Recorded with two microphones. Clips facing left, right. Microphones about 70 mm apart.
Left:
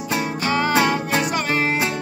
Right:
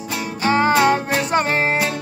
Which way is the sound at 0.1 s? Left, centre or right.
Left.